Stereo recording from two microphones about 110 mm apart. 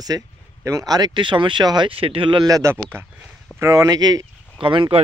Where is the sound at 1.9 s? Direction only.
55° right (ahead or behind).